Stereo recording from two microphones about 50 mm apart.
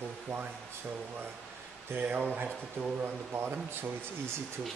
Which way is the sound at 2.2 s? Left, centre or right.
Right.